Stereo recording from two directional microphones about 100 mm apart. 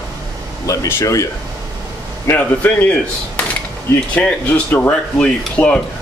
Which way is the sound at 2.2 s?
20° left (ahead or behind).